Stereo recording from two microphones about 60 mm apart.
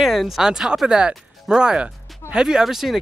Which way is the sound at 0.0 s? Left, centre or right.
Centre.